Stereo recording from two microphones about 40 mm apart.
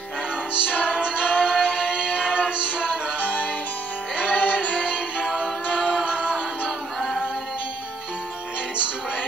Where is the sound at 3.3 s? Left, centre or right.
Left.